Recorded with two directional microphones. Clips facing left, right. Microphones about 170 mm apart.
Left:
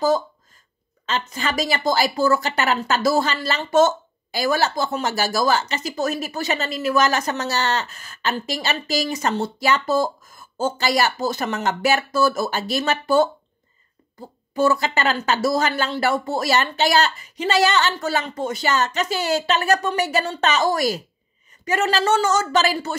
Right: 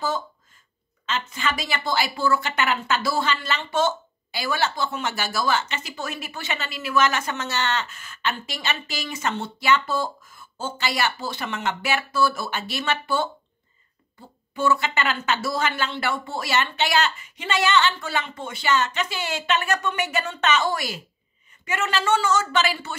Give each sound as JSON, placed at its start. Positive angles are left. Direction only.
{"t": 1.0, "sound": "speech", "side_deg": 40}